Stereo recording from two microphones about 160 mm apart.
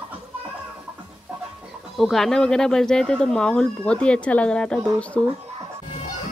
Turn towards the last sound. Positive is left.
turn(degrees=5)  # may be behind; listen again after turning